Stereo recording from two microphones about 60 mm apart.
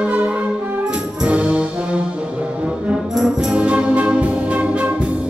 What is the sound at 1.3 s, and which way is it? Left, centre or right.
Brass instrument, centre.